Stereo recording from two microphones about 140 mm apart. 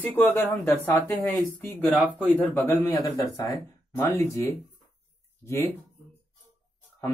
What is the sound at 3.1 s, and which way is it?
Speech, 30° left (ahead or behind).